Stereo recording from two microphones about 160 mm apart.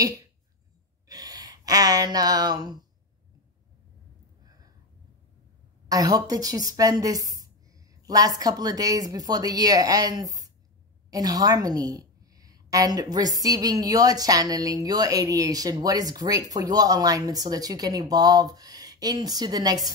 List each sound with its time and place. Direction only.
1.0 s speech: 25° right (ahead or behind)
5.9 s a woman's voice: 25° right (ahead or behind)